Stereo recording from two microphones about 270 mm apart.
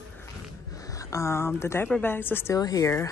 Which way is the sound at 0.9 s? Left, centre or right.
Centre.